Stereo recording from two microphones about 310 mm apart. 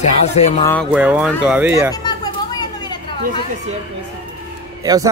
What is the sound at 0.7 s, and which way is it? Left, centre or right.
Speech, centre.